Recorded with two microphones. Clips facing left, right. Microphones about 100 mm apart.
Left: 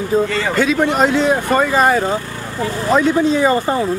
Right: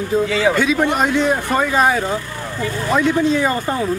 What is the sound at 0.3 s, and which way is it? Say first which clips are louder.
Speech: right 1 dB; 5° right (ahead or behind).